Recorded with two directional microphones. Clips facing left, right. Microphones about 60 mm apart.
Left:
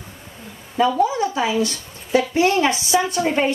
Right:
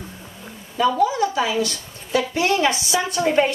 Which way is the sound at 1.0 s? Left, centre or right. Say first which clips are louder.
Even; left.